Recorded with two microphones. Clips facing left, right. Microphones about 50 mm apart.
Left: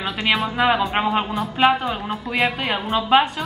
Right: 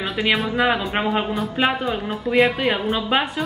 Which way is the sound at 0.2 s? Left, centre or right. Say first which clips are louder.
Even; centre.